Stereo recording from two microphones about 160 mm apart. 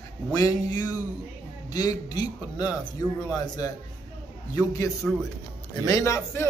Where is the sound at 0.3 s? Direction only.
25° left (ahead or behind).